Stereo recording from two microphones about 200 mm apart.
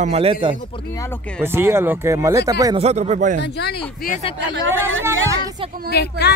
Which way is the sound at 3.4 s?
55° left (ahead or behind).